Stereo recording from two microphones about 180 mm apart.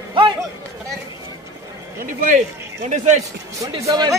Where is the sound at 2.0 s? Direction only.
45° right (ahead or behind).